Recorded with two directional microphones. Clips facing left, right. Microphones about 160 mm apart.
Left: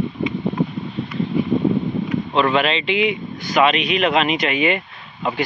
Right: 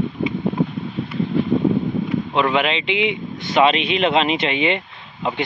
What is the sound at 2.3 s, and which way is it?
A man's voice, 15° right (ahead or behind).